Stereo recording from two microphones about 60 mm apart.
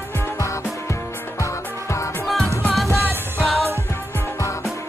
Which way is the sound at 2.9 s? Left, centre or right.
Right.